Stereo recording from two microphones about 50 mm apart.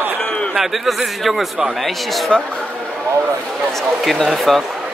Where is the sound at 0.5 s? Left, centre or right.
Centre.